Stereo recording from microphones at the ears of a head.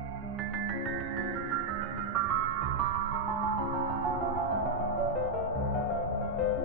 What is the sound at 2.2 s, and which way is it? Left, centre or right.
Music, right.